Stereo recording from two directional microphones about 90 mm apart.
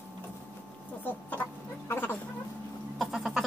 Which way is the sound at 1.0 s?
20° left (ahead or behind).